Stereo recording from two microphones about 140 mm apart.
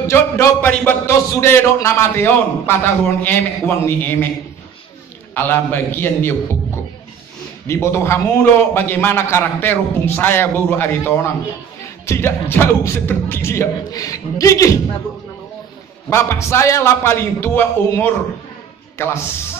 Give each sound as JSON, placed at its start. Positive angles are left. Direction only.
{"t": 0.1, "sound": "a man's voice", "side_deg": 15}
{"t": 5.3, "sound": "a man's voice", "side_deg": 15}
{"t": 7.6, "sound": "a man's voice", "side_deg": 20}
{"t": 16.1, "sound": "a man's voice", "side_deg": 20}